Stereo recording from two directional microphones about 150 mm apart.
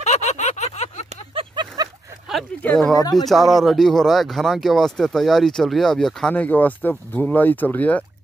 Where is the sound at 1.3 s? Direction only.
35° right (ahead or behind).